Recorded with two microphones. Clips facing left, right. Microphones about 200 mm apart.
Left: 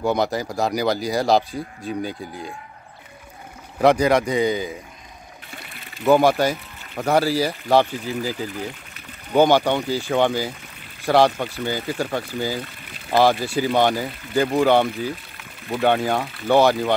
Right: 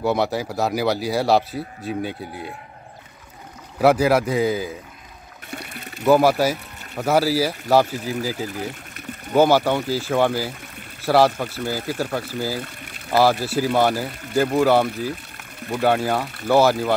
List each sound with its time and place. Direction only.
0.0 s speech: 5° right (ahead or behind)
3.8 s speech: 5° right (ahead or behind)
5.5 s a sound: 45° right (ahead or behind)
6.0 s speech: centre (ahead or behind)
12.6 s pour: 50° right (ahead or behind)
13.1 s speech: 5° right (ahead or behind)